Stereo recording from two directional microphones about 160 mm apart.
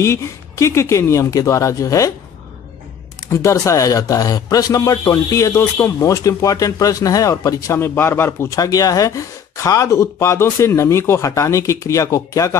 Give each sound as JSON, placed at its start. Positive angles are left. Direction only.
{"t": 0.0, "sound": "speech", "side_deg": 20}
{"t": 3.3, "sound": "speech", "side_deg": 20}